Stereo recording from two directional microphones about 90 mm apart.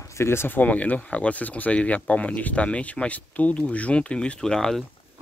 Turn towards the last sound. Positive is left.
turn(degrees=5)  # may be behind; listen again after turning